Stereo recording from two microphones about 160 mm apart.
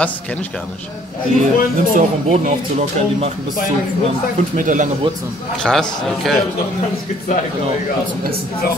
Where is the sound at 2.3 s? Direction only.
45° right (ahead or behind).